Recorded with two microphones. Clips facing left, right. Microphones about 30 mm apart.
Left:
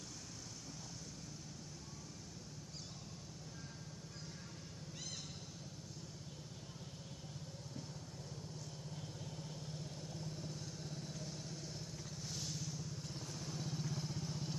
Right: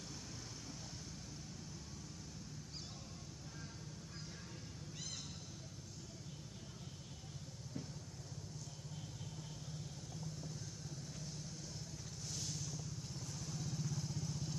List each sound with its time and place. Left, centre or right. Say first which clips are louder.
12.2 s vehicle: even; centre
13.3 s vehicle: left 1 dB; left